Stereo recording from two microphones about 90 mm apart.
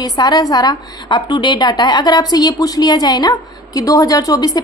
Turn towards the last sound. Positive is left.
turn(degrees=45)  # may be behind; listen again after turning